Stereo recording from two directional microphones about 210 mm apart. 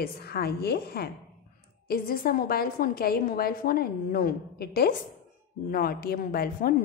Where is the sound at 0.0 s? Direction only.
45° left (ahead or behind).